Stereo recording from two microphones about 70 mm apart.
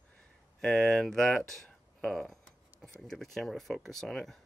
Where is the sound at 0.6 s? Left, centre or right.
Centre.